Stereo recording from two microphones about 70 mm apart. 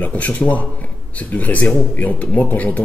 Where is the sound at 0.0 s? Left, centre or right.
Left.